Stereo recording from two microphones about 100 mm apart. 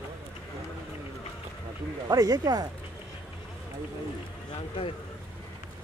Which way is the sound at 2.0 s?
40° right (ahead or behind).